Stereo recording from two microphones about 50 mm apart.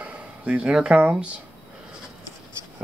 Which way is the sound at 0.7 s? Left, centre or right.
Centre.